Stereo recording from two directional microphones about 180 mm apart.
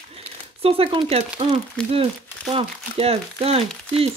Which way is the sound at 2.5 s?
30° right (ahead or behind).